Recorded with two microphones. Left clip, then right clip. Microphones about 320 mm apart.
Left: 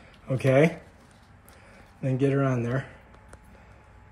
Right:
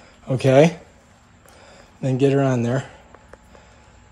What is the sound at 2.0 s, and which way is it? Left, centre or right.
Speech, centre.